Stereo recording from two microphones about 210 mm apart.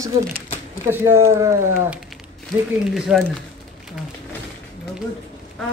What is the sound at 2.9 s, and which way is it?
Speech, centre (ahead or behind).